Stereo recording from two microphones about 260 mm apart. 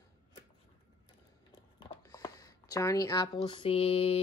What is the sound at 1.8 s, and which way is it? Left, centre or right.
Speech, centre.